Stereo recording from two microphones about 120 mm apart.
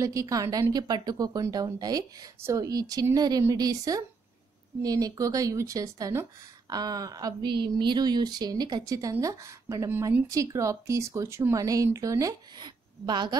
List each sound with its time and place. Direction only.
0.0 s speech: 25° right (ahead or behind)
9.8 s speech: 20° right (ahead or behind); by 13.4 s 35° right (ahead or behind)